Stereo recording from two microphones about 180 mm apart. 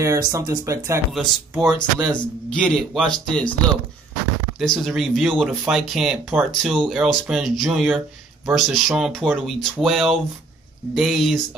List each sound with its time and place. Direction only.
0.0 s speech: 20° right (ahead or behind)
1.1 s speech: centre (ahead or behind)
4.6 s speech: centre (ahead or behind)